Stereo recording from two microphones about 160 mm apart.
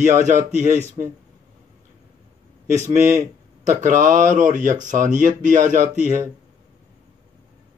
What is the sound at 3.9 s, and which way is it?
Speech, 55° right (ahead or behind).